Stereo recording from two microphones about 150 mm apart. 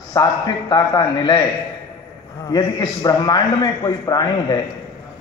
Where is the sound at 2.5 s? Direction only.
25° left (ahead or behind).